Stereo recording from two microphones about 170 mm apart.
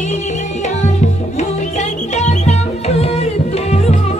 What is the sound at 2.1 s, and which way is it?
Music, 40° left (ahead or behind).